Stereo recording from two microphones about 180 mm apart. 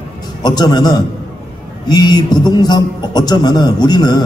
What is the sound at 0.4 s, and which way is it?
A man's voice, 25° left (ahead or behind).